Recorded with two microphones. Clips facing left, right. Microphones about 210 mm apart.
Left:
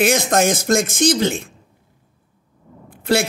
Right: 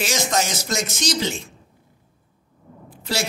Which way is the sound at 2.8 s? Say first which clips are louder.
Left 9 dB; 55° left (ahead or behind).